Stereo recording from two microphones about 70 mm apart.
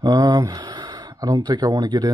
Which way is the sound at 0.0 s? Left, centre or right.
Right.